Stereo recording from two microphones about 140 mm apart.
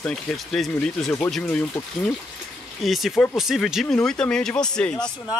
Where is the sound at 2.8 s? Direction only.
Centre (ahead or behind).